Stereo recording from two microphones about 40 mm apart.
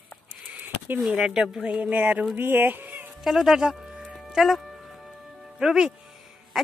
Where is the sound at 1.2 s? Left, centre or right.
Centre.